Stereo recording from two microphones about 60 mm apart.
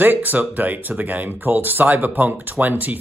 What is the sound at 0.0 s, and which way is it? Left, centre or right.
Speech, right.